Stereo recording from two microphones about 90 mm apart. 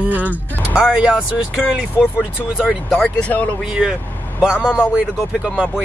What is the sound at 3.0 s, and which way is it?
Speech, 15° left (ahead or behind).